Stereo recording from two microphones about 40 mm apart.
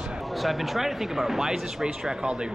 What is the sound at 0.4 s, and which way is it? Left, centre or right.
Speech, centre.